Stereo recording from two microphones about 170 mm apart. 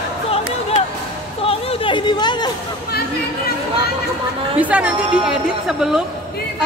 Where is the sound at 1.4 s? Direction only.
35° left (ahead or behind).